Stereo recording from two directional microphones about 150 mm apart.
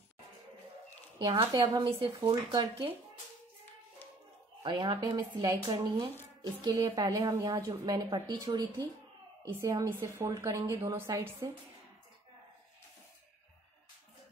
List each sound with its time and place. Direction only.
1.2 s speech: 30° right (ahead or behind)
4.6 s a woman's voice: 30° right (ahead or behind)
9.8 s a woman's voice: 20° right (ahead or behind)